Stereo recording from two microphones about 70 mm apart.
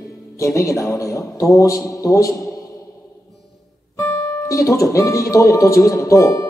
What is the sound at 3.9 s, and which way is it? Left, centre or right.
Music, left.